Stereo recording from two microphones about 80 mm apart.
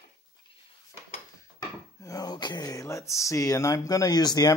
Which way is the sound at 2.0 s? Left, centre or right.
Left.